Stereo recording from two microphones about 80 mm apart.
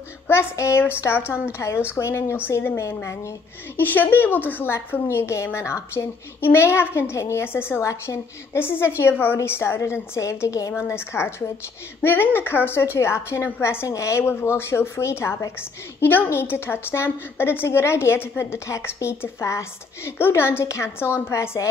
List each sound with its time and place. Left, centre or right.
0.3 s a woman's voice: left
2.7 s a woman's voice: left
3.8 s a woman's voice: left
7.8 s a woman's voice: left
8.5 s a woman's voice: left